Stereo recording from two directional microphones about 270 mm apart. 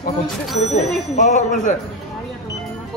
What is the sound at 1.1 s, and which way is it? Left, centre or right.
Speech, left.